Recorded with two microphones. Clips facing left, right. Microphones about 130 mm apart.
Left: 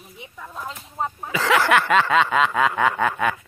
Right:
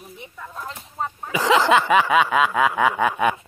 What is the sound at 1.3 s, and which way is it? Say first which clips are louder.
Snicker: right 2 dB; 15° right (ahead or behind).